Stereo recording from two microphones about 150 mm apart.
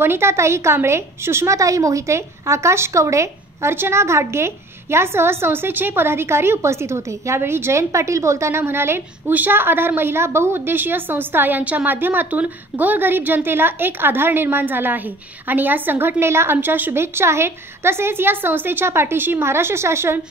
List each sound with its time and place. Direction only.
0.0 s a woman's voice: 15° right (ahead or behind)